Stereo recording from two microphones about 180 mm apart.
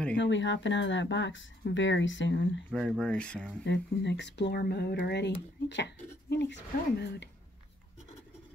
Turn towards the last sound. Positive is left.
turn(degrees=75)  # may be behind; listen again after turning